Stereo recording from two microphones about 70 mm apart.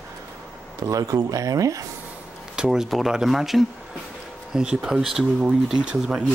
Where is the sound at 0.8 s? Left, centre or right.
Right.